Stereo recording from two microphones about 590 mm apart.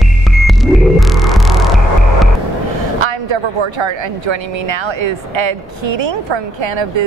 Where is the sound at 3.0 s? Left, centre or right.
Right.